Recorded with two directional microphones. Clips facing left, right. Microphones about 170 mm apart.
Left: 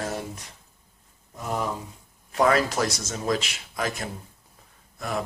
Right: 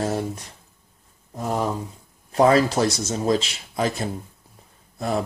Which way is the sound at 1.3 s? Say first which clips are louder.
Right 4 dB; 35° right (ahead or behind).